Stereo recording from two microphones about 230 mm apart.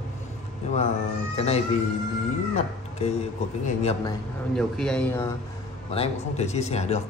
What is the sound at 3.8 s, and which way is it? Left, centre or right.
Speech, left.